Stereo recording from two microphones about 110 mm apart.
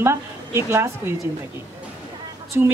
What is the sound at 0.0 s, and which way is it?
Speech, 25° right (ahead or behind).